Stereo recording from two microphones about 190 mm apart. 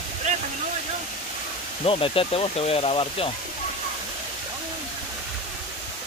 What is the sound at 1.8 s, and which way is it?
Speech, 30° left (ahead or behind).